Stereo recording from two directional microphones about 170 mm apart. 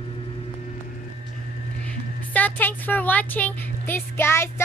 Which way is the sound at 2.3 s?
10° left (ahead or behind).